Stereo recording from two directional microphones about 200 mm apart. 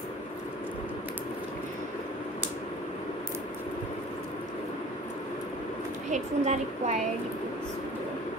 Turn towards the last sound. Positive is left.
turn(degrees=-35)  # may be behind; listen again after turning